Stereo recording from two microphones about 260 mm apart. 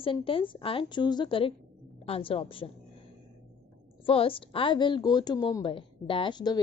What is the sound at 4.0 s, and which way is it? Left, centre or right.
A woman's voice, left.